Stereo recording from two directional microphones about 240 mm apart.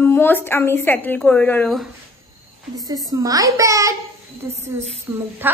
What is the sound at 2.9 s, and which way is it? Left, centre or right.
A woman's voice, centre.